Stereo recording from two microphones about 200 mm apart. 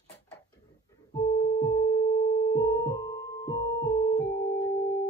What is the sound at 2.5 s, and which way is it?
Music, 15° left (ahead or behind).